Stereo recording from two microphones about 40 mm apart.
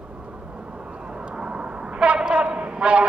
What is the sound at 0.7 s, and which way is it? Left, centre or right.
Vehicle, right.